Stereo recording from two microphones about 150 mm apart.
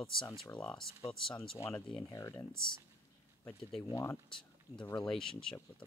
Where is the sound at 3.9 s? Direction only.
20° left (ahead or behind).